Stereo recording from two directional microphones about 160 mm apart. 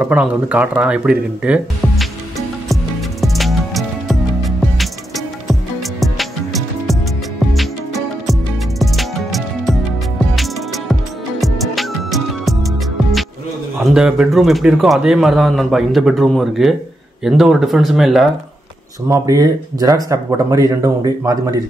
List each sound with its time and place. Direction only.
0.0 s speech: 10° right (ahead or behind)
2.7 s music: centre (ahead or behind)
8.3 s music: centre (ahead or behind)
11.4 s music: centre (ahead or behind)
13.8 s a man's voice: 5° right (ahead or behind)
19.0 s speech: 20° right (ahead or behind)